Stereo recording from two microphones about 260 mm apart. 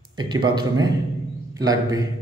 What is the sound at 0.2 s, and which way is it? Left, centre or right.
A man's voice, centre.